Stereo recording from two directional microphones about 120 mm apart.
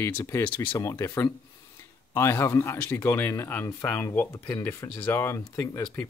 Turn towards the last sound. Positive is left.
turn(degrees=20)  # may be behind; listen again after turning